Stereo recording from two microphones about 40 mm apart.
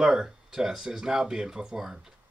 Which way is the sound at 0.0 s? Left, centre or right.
Centre.